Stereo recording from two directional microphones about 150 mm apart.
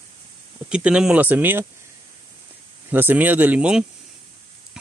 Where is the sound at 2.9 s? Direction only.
15° right (ahead or behind).